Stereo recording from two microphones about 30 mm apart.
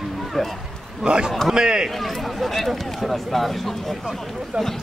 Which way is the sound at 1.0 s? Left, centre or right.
Right.